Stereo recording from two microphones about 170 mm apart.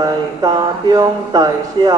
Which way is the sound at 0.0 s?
20° right (ahead or behind).